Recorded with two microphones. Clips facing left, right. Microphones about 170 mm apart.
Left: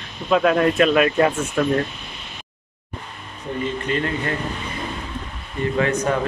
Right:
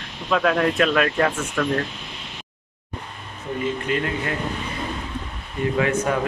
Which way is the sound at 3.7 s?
5° right (ahead or behind).